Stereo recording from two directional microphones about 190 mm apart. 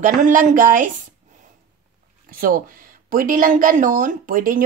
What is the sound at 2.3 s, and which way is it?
A woman's voice, 50° right (ahead or behind).